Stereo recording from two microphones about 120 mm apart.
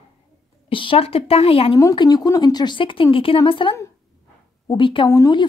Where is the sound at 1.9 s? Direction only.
35° left (ahead or behind).